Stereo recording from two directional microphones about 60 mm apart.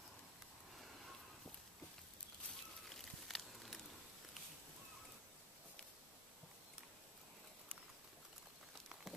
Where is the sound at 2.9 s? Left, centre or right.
Centre.